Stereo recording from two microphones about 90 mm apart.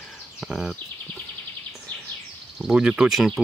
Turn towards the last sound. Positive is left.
turn(degrees=0)  # may be behind; listen again after turning